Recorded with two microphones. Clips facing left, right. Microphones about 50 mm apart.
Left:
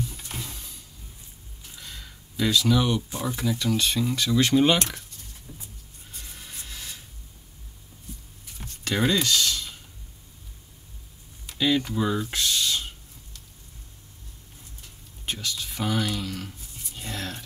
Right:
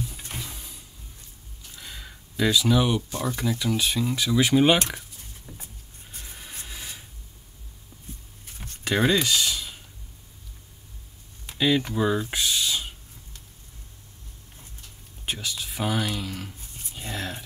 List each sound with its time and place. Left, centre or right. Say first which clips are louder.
0.3 s music: even; centre
1.8 s a sound: right 2 dB; centre
3.1 s speech: right 1 dB; centre
3.3 s speech: left 2 dB; centre
6.2 s music: right 1 dB; centre
8.8 s speech: right 2 dB; centre
11.4 s speech: right 1 dB; centre
12.3 s a sound: even; centre
15.2 s speech: even; centre
16.9 s a sound: right 1 dB; centre